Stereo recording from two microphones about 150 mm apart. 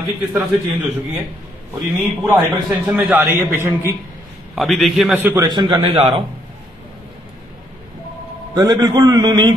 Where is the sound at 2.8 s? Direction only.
10° right (ahead or behind).